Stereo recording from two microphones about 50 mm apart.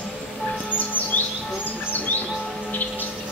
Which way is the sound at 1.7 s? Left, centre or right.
Left.